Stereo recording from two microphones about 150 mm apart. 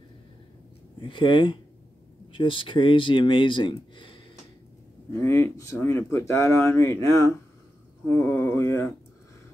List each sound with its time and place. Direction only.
1.0 s speech: 35° left (ahead or behind)
5.1 s speech: 15° left (ahead or behind)